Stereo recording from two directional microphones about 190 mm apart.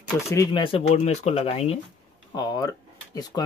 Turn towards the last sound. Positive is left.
turn(degrees=20)  # may be behind; listen again after turning